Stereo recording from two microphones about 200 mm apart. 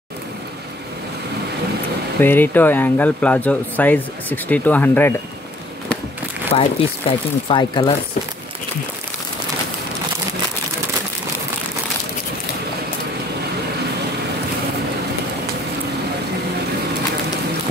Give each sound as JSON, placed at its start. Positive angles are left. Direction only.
{"t": 2.1, "sound": "speech", "side_deg": 10}
{"t": 6.5, "sound": "speech", "side_deg": 30}